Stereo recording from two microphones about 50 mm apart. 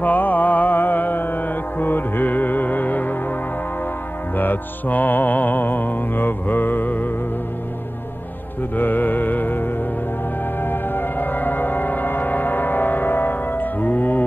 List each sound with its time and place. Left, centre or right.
0.0 s music: left
4.4 s music: left
8.7 s music: left